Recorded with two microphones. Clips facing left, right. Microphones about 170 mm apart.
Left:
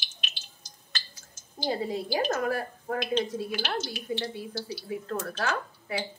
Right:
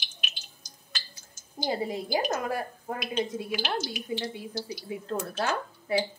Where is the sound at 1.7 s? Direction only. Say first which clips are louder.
Even; 15° right (ahead or behind).